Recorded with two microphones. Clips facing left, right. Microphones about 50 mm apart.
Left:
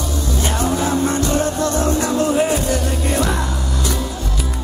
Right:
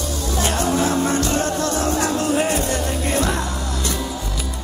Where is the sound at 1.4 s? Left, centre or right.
Left.